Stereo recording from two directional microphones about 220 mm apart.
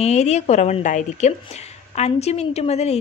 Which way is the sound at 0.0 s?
30° left (ahead or behind).